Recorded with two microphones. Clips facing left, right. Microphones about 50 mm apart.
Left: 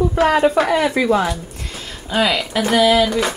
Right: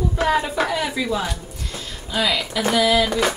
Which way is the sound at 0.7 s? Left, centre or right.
Left.